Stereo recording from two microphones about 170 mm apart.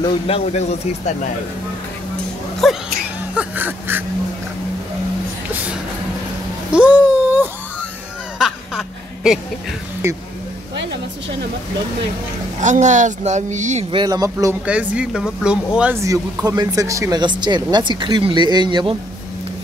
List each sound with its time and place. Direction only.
0.0 s speech: 40° left (ahead or behind)
2.6 s speech: centre (ahead or behind)
3.3 s a sound: 10° right (ahead or behind)
6.7 s wail: 5° right (ahead or behind)
8.4 s a sound: 5° right (ahead or behind)
10.0 s speech: 15° right (ahead or behind)
12.6 s speech: 45° right (ahead or behind)
13.9 s speech: 25° right (ahead or behind)
14.7 s speech: 5° right (ahead or behind)
16.0 s speech: 20° right (ahead or behind)